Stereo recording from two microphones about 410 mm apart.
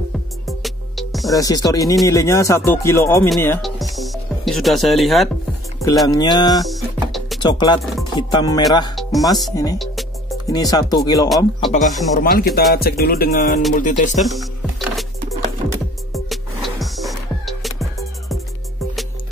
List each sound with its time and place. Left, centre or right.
0.5 s speech: centre
6.6 s music: centre
7.4 s speech: centre
12.2 s music: left
13.7 s speech: centre
14.2 s music: centre
16.1 s music: centre